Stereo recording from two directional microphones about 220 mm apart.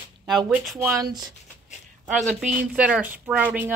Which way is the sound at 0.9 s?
20° right (ahead or behind).